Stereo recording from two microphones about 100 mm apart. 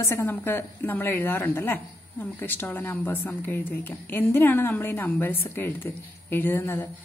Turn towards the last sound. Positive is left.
turn(degrees=20)  # may be behind; listen again after turning